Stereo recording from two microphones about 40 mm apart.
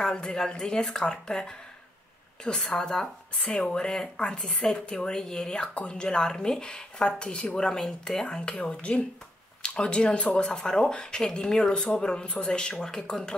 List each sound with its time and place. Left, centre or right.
0.0 s speech: centre